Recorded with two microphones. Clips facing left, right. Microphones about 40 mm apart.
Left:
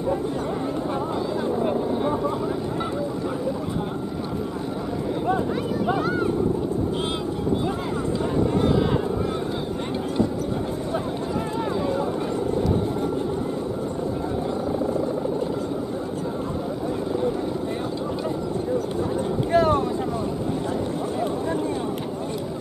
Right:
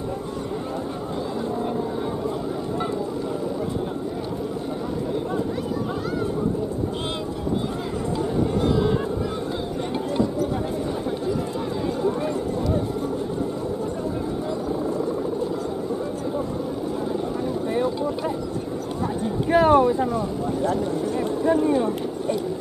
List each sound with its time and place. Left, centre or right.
19.5 s boat: centre